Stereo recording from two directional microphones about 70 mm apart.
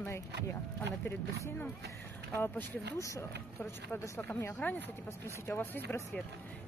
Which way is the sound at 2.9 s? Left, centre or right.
Left.